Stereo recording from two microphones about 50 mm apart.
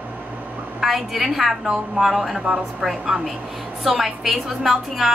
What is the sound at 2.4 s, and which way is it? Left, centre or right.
Speech, centre.